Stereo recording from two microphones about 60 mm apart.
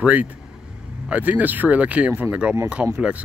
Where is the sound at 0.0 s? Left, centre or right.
Right.